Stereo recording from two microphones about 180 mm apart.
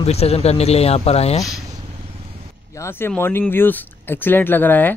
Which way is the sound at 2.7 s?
15° left (ahead or behind).